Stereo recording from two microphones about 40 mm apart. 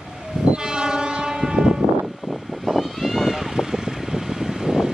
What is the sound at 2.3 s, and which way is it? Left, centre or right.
Vehicle, centre.